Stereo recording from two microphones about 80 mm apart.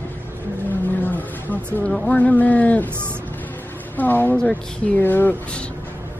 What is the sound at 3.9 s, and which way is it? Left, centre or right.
Speech, left.